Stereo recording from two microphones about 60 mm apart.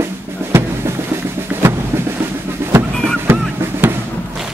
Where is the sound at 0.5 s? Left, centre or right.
Right.